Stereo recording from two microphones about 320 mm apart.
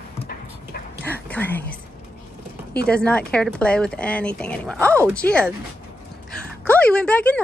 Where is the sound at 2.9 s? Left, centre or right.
Centre.